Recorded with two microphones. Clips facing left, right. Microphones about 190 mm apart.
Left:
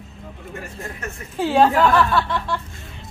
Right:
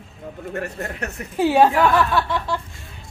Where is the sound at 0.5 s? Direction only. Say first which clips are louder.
Right 6 dB; 65° right (ahead or behind).